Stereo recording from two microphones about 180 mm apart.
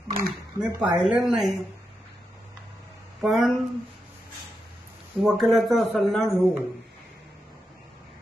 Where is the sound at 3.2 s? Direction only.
Centre (ahead or behind).